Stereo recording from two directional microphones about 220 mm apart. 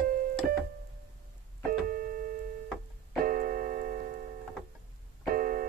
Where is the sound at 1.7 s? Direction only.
40° right (ahead or behind).